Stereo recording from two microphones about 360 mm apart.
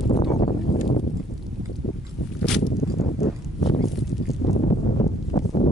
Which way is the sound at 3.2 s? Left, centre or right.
Left.